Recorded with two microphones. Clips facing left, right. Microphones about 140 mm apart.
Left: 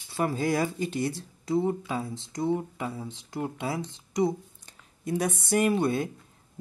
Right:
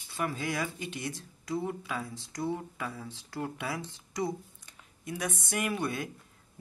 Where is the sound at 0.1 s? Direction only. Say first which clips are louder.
Left 7 dB; 35° left (ahead or behind).